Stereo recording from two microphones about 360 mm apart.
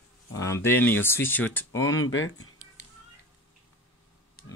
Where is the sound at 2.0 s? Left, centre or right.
Left.